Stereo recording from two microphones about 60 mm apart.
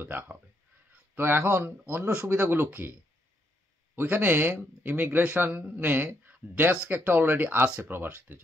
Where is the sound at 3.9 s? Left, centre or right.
Right.